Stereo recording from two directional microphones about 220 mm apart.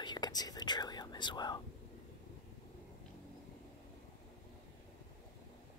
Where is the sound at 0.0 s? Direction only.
20° left (ahead or behind).